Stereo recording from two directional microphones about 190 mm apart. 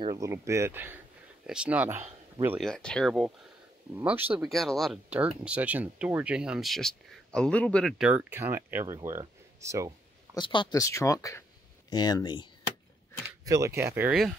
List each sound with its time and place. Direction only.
0.0 s speech: 15° right (ahead or behind)
2.6 s speech: 5° left (ahead or behind)
4.4 s speech: centre (ahead or behind); by 9.9 s 15° right (ahead or behind)
10.3 s speech: 25° left (ahead or behind)
13.5 s speech: 15° right (ahead or behind)